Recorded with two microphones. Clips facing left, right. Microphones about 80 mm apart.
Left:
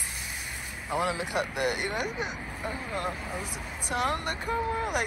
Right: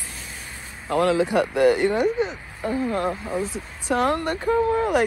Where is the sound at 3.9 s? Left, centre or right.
Right.